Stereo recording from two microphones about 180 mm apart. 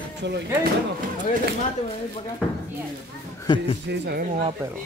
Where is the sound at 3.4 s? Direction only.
25° left (ahead or behind).